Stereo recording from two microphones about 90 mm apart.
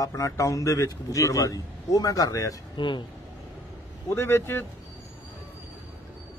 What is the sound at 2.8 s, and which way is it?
Speech, 60° left (ahead or behind).